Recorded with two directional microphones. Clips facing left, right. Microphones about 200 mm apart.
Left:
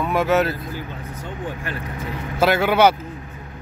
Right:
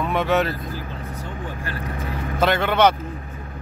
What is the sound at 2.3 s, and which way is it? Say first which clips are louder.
Speech: left 2 dB; 5° left (ahead or behind).